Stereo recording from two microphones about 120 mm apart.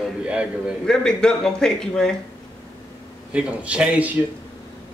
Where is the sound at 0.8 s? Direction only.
5° left (ahead or behind).